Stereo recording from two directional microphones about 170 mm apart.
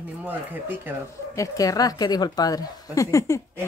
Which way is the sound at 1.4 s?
20° left (ahead or behind).